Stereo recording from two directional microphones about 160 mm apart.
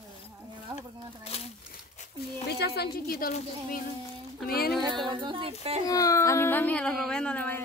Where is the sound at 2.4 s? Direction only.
90° left; by 4.7 s 70° left (ahead or behind).